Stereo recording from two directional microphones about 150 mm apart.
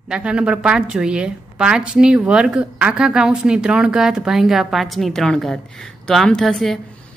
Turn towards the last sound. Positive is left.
turn(degrees=0)  # may be behind; listen again after turning